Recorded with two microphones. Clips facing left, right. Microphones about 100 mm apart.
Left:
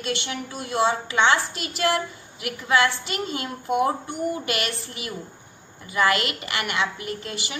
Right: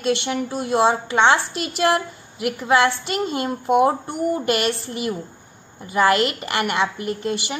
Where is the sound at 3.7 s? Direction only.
50° right (ahead or behind).